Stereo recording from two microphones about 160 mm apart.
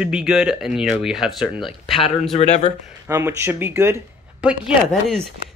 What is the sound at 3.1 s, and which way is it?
Speech, 15° right (ahead or behind).